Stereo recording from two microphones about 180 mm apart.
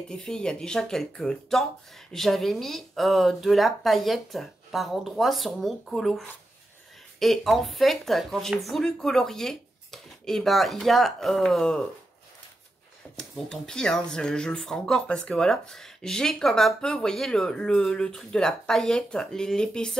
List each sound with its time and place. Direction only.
0.1 s speech: 5° left (ahead or behind)
13.1 s speech: 5° left (ahead or behind)